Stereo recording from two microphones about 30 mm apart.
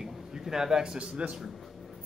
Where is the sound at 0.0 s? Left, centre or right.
Centre.